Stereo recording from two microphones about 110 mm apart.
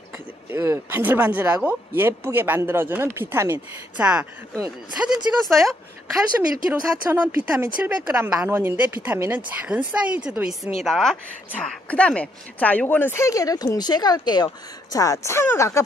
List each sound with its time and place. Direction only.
0.5 s speech: 25° right (ahead or behind)
3.9 s speech: 10° right (ahead or behind)
6.7 s speech: 20° right (ahead or behind)
10.6 s speech: centre (ahead or behind); by 15.8 s 25° left (ahead or behind)